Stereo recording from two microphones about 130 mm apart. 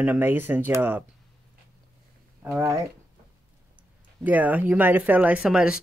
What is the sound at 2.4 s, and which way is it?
Speech, 10° right (ahead or behind).